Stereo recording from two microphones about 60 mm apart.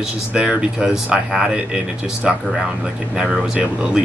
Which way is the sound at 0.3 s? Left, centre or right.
Centre.